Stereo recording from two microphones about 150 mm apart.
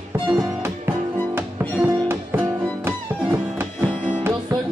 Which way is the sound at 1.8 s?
15° right (ahead or behind).